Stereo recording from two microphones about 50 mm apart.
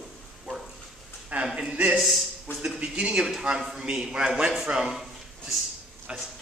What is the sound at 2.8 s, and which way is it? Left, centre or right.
Speech, right.